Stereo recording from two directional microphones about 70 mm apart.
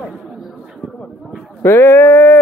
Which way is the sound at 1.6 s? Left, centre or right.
Left.